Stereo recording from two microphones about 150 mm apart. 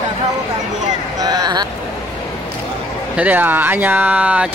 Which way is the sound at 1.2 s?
25° right (ahead or behind).